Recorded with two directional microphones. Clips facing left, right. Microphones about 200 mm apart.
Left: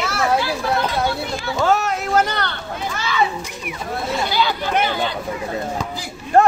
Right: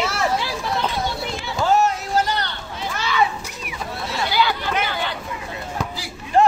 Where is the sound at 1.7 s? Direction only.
55° left (ahead or behind).